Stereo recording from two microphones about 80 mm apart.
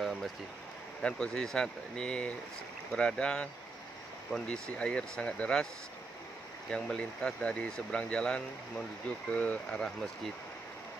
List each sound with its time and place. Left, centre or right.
0.0 s a sound: centre
1.0 s speech: centre
6.7 s speech: centre